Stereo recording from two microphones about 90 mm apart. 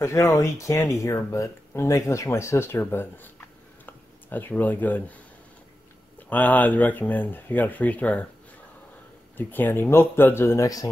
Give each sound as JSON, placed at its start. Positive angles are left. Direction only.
{"t": 0.0, "sound": "speech", "side_deg": 35}
{"t": 6.2, "sound": "speech", "side_deg": 20}
{"t": 9.4, "sound": "speech", "side_deg": 20}